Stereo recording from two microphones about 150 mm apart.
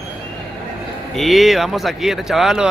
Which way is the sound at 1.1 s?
Centre (ahead or behind).